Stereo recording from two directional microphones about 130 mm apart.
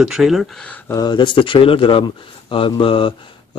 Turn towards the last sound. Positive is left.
turn(degrees=40)  # may be behind; listen again after turning